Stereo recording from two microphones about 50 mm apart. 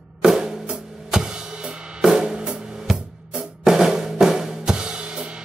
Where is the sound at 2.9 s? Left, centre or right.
Centre.